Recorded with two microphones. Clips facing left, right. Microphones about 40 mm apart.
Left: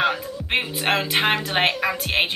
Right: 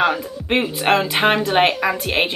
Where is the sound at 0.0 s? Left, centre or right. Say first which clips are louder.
Right 3 dB; centre.